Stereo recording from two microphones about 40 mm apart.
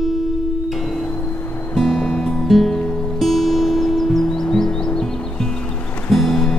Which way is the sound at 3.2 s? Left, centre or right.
Centre.